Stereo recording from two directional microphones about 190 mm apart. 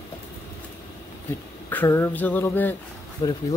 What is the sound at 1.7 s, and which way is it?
Speech, 10° left (ahead or behind).